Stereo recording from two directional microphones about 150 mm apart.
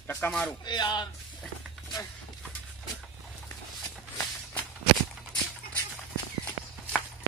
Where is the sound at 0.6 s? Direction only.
30° left (ahead or behind).